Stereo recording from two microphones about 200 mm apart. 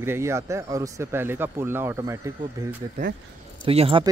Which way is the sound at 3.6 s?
30° right (ahead or behind).